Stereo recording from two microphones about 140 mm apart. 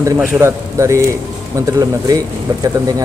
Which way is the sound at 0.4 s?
20° right (ahead or behind).